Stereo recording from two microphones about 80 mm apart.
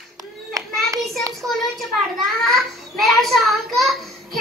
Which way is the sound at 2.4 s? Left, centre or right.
Centre.